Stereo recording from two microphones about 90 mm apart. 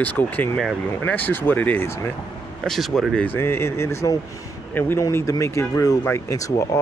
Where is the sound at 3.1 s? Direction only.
20° left (ahead or behind).